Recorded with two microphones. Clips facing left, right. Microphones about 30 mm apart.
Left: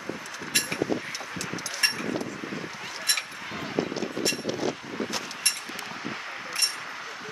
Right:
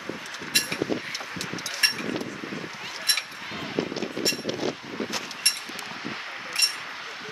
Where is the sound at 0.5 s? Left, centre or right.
Right.